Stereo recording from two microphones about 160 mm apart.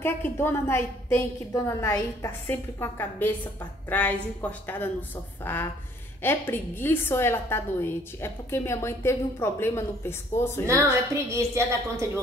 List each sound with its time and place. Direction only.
0.0 s a woman's voice: 15° left (ahead or behind)
11.2 s a woman's voice: 20° right (ahead or behind)